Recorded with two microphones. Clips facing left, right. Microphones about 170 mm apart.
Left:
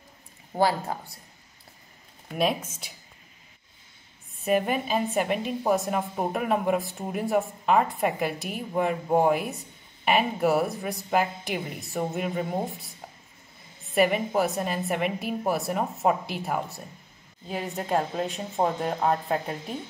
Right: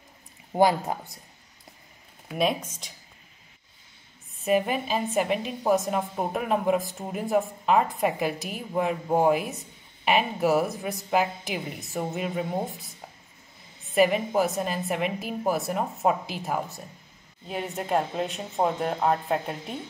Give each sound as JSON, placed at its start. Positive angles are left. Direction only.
{"t": 0.5, "sound": "speech", "side_deg": -20}
{"t": 2.2, "sound": "speech", "side_deg": 0}
{"t": 4.4, "sound": "a woman's voice", "side_deg": 0}
{"t": 13.9, "sound": "a woman's voice", "side_deg": 0}